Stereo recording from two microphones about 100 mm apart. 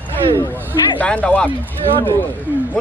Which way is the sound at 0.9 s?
15° left (ahead or behind).